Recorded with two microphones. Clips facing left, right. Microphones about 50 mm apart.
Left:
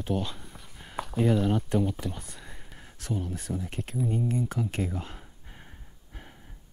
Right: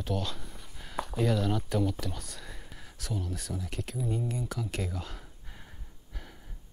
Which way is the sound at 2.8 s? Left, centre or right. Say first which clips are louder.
Left 4 dB; left.